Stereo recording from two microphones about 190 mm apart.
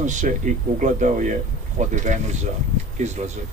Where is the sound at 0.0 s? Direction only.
40° right (ahead or behind).